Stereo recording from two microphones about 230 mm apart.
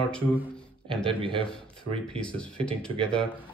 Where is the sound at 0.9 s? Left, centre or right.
Right.